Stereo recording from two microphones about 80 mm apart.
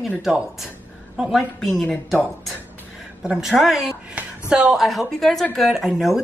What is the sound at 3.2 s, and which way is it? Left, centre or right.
Speech, centre.